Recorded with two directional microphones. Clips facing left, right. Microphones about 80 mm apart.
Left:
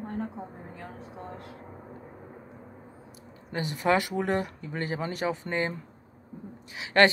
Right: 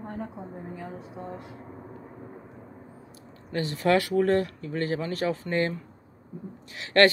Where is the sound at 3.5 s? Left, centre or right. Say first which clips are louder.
Right 2 dB; centre.